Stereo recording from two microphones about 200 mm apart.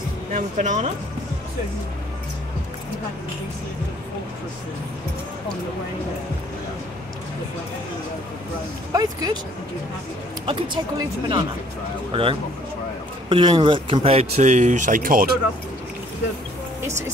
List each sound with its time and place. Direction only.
0.3 s speech: 35° right (ahead or behind)
8.9 s speech: 20° right (ahead or behind)
10.4 s speech: 25° right (ahead or behind); by 15.2 s 45° right (ahead or behind)